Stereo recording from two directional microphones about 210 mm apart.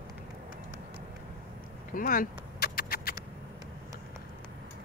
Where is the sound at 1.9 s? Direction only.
40° left (ahead or behind).